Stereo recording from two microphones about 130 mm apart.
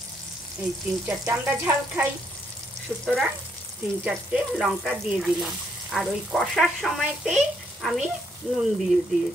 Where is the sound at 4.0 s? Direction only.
10° right (ahead or behind).